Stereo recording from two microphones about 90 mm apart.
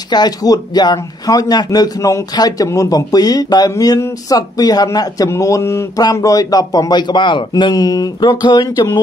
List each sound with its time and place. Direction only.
0.1 s speech: 50° left (ahead or behind)
7.7 s speech: 45° left (ahead or behind)